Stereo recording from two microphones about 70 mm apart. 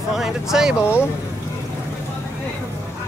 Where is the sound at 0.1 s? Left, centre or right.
Centre.